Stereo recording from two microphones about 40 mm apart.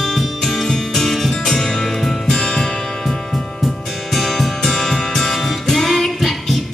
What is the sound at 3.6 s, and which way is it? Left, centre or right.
Music, centre.